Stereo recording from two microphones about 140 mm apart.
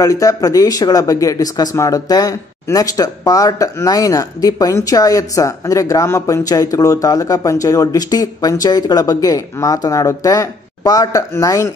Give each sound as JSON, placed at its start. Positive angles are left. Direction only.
{"t": 0.0, "sound": "speech", "side_deg": 25}